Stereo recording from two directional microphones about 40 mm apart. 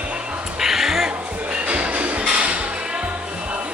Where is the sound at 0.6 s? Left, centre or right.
Centre.